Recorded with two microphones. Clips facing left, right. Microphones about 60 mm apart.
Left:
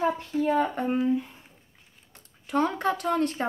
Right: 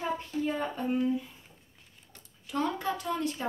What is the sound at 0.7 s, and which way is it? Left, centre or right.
Speech, left.